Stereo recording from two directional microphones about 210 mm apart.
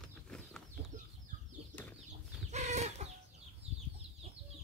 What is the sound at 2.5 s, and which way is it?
Chicken, 30° right (ahead or behind).